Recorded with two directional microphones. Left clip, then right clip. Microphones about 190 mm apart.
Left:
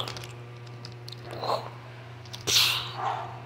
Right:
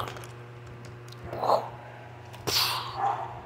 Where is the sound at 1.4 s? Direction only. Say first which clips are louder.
Right 5 dB; 20° right (ahead or behind).